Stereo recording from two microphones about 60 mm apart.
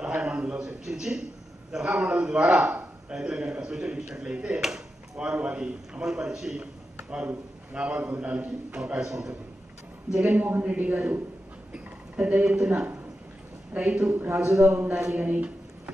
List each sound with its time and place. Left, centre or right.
0.0 s a sound: centre
0.4 s a man's voice: centre
0.8 s speech: centre
2.7 s a sound: right
3.2 s speech: centre
5.2 s a man's voice: centre
10.5 s a woman's voice: right
11.7 s a sound: right
12.6 s a woman's voice: right
15.0 s speech: centre
15.2 s a woman's voice: right